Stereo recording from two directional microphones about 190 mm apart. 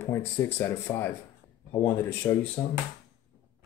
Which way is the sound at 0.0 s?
15° left (ahead or behind).